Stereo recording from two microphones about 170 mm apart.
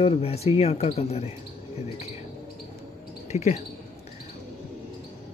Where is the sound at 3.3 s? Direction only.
40° left (ahead or behind).